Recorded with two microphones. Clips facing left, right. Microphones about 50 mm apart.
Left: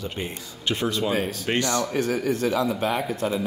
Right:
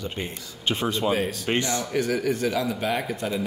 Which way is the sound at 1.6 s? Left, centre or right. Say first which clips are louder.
Left 2 dB; left.